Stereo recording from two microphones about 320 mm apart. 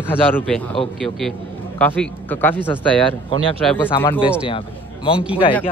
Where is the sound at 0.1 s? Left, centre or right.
Centre.